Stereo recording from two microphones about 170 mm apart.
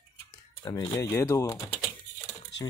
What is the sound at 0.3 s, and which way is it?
Typing, 20° left (ahead or behind).